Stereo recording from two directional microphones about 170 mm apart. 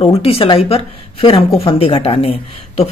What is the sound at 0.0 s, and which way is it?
A woman's voice, 35° left (ahead or behind).